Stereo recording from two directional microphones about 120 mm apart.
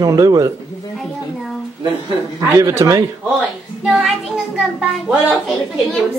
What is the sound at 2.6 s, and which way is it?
Speech, 25° right (ahead or behind).